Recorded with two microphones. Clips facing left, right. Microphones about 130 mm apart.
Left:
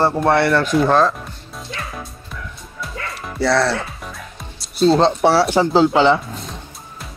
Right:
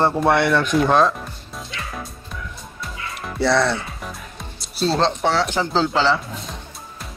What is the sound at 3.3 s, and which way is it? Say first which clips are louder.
Speech: left 1 dB; centre (ahead or behind).